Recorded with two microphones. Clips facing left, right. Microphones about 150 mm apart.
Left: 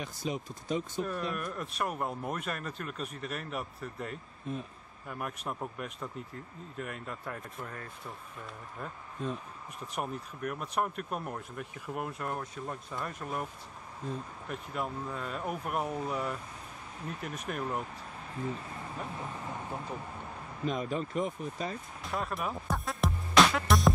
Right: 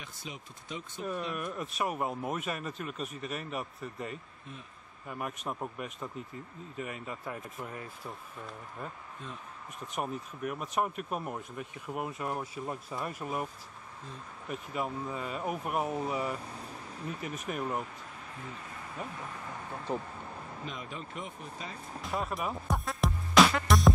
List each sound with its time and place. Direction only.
0.0 s speech: 40° left (ahead or behind)
1.0 s speech: 5° right (ahead or behind)
4.5 s speech: 40° left (ahead or behind)
5.0 s speech: centre (ahead or behind)
14.5 s speech: centre (ahead or behind)
20.6 s speech: 40° left (ahead or behind)
22.0 s music: centre (ahead or behind)